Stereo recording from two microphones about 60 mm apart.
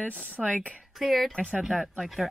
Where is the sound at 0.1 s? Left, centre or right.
Centre.